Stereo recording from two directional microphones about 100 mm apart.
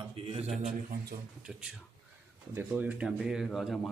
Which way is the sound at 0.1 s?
80° right.